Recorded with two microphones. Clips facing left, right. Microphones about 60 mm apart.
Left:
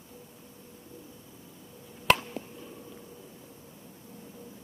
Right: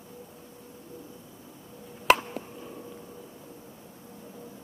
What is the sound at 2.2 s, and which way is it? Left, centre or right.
Plop, centre.